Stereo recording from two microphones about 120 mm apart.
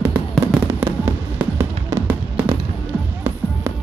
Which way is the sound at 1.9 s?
20° right (ahead or behind).